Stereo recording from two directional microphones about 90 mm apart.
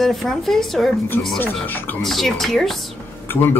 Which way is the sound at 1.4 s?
20° left (ahead or behind).